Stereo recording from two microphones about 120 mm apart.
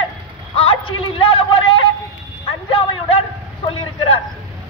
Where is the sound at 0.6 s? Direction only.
50° left (ahead or behind).